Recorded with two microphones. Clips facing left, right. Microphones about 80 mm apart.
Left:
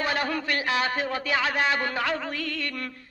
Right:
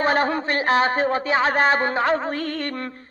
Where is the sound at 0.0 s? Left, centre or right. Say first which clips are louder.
Right 7 dB; right.